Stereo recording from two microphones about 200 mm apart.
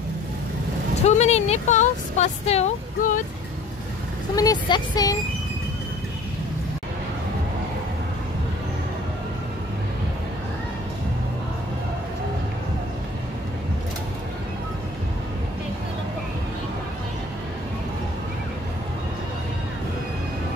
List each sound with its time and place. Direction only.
1.0 s speech: 35° left (ahead or behind)
4.4 s speech: 20° left (ahead or behind)